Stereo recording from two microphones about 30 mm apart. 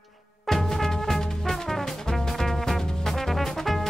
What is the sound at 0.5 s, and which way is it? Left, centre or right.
Music, centre.